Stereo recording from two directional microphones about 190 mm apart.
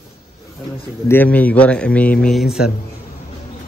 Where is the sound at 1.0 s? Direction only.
10° left (ahead or behind).